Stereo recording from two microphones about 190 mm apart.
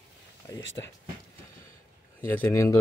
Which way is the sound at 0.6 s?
75° left (ahead or behind).